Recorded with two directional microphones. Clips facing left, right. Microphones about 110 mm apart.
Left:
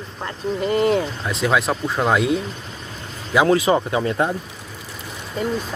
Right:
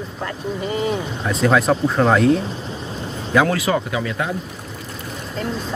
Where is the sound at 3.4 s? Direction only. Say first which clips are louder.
Left 3 dB; 25° left (ahead or behind).